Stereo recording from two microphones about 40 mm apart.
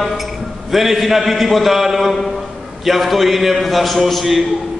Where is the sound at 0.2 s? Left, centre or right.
Centre.